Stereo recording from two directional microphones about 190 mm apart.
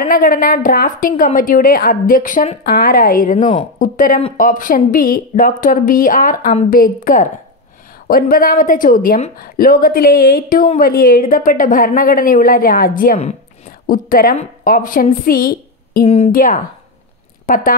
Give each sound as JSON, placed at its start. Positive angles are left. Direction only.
{"t": 0.0, "sound": "a woman's voice", "side_deg": 50}
{"t": 2.6, "sound": "a woman's voice", "side_deg": 50}